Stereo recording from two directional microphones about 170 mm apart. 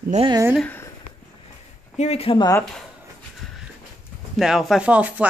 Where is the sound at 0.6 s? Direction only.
10° left (ahead or behind).